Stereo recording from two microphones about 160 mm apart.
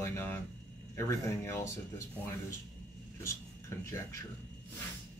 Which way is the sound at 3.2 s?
15° left (ahead or behind).